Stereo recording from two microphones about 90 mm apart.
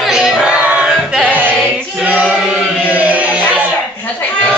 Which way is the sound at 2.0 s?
15° right (ahead or behind).